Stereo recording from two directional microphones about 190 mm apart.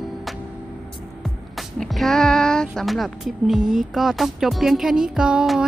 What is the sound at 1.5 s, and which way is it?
Speech, centre (ahead or behind).